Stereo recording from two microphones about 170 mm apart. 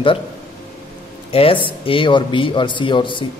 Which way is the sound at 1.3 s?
35° left (ahead or behind).